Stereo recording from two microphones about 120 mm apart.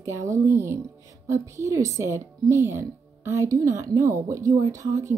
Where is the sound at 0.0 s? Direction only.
25° right (ahead or behind).